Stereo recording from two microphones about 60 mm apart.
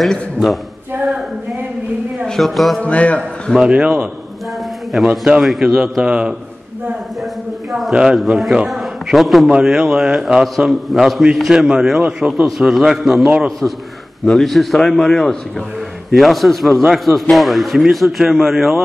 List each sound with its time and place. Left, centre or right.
0.0 s a man's voice: centre
2.2 s a man's voice: centre
2.8 s a man's voice: left
3.5 s a man's voice: centre
5.4 s a man's voice: centre
7.9 s speech: centre
8.3 s a man's voice: centre
14.3 s a man's voice: centre